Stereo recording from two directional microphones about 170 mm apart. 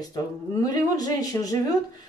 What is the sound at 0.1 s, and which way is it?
Speech, 20° left (ahead or behind).